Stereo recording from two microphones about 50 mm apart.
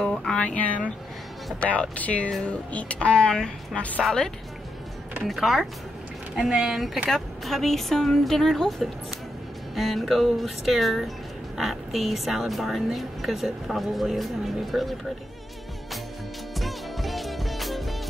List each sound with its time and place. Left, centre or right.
0.4 s a woman's voice: left; by 4.3 s centre
5.3 s speech: centre
16.5 s music: centre